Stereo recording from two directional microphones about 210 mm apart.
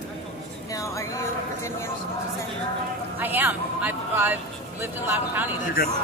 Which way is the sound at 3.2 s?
10° right (ahead or behind).